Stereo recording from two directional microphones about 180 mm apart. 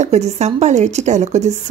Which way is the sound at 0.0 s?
40° right (ahead or behind).